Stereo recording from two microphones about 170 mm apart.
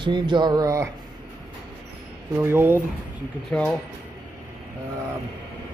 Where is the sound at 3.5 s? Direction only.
10° left (ahead or behind).